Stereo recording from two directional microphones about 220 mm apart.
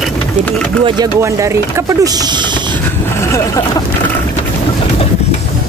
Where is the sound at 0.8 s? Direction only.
20° right (ahead or behind).